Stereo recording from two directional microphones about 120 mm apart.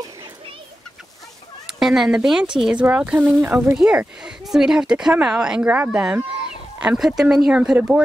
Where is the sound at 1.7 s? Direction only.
5° right (ahead or behind).